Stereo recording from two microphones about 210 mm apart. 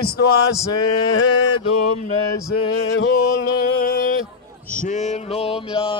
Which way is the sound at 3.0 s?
50° left (ahead or behind).